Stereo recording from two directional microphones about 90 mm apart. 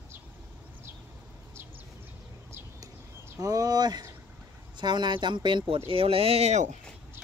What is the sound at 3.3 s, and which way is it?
Speech, 40° right (ahead or behind).